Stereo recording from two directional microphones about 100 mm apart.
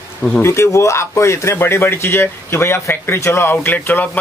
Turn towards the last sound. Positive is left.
turn(degrees=20)  # may be behind; listen again after turning